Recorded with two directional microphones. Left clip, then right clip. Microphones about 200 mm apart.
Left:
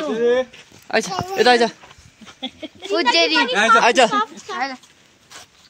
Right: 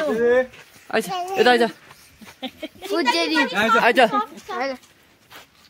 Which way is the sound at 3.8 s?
5° right (ahead or behind).